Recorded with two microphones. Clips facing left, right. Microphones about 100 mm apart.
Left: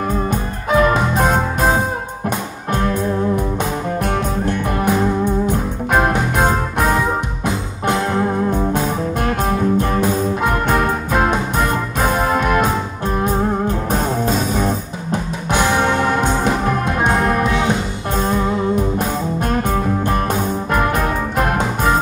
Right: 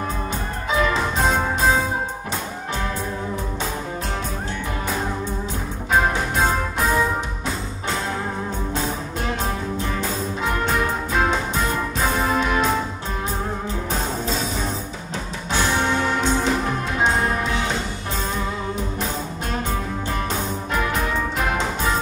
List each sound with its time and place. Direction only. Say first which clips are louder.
0.7 s music: left 6 dB; 55° left (ahead or behind)
4.5 s music: left 9 dB; 55° left (ahead or behind)
8.5 s music: left 8 dB; 55° left (ahead or behind)
13.9 s music: left 6 dB; 50° left (ahead or behind)
19.5 s music: left 6 dB; 50° left (ahead or behind)